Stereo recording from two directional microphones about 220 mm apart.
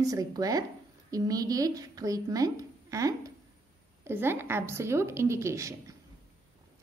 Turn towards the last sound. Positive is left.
turn(degrees=-15)  # may be behind; listen again after turning